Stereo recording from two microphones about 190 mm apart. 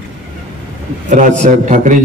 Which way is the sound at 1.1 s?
40° right (ahead or behind).